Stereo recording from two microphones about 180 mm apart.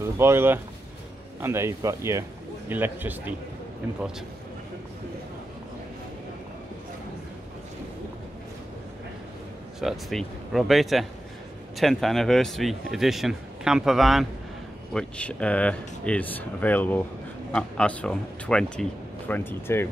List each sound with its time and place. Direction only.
0.2 s speech: 15° right (ahead or behind)
9.8 s speech: centre (ahead or behind)